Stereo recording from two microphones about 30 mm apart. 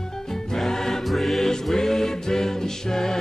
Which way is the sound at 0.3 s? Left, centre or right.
Centre.